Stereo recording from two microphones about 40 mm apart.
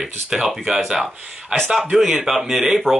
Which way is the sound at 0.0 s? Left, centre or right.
Centre.